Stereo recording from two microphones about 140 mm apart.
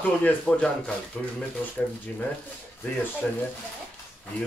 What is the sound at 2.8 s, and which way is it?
Speech, 15° left (ahead or behind).